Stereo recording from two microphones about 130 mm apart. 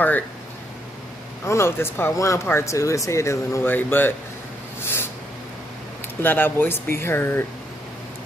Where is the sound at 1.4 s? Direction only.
20° left (ahead or behind).